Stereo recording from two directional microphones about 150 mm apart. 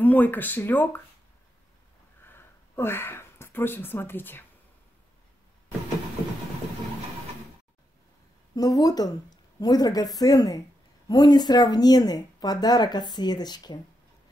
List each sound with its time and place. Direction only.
0.0 s speech: 10° left (ahead or behind)
2.2 s a sound: 15° left (ahead or behind)
8.5 s speech: 25° left (ahead or behind)